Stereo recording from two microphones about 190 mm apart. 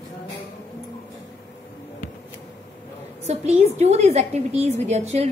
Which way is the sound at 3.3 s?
35° right (ahead or behind).